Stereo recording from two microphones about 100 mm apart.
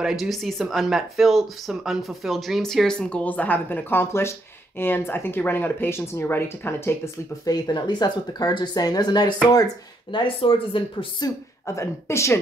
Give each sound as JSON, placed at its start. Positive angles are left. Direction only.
{"t": 0.0, "sound": "speech", "side_deg": -5}
{"t": 7.4, "sound": "speech", "side_deg": 40}
{"t": 10.1, "sound": "speech", "side_deg": 60}
{"t": 11.1, "sound": "speech", "side_deg": 35}